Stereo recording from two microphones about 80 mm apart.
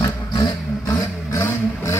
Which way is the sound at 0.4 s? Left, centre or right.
Left.